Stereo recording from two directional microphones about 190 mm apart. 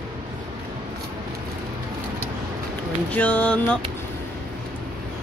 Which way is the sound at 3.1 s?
5° left (ahead or behind).